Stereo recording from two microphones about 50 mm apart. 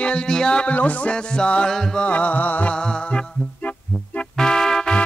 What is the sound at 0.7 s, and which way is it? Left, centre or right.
Music, left.